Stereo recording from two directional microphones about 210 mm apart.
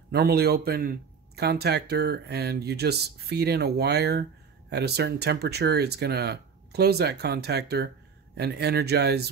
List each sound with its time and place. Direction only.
0.1 s a man's voice: 50° right (ahead or behind)